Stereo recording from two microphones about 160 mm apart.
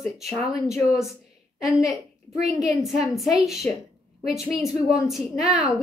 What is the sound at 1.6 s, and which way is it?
A woman's voice, centre (ahead or behind).